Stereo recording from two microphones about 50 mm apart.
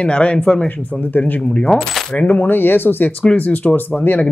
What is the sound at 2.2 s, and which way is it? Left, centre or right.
Speech, left.